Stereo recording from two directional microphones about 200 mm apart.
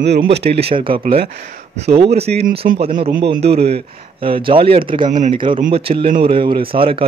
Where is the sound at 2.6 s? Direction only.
55° right (ahead or behind).